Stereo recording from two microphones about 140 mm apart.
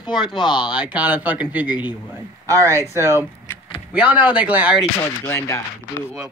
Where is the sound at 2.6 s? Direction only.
15° left (ahead or behind).